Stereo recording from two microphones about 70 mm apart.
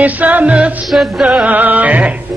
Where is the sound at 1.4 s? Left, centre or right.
Right.